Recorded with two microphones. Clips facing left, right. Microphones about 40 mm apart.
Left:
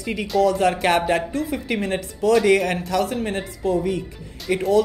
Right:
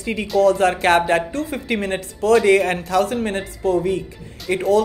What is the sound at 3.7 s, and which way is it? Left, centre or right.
Speech, right.